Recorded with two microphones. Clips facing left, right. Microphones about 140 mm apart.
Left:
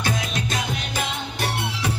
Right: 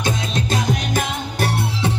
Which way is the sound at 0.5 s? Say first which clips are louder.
Right 6 dB; 40° right (ahead or behind).